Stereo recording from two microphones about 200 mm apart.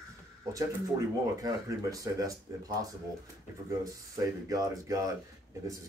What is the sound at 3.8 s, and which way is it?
Speech, 15° right (ahead or behind).